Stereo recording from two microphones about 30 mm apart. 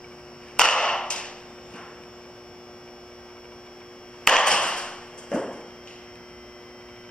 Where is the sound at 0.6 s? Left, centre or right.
Left.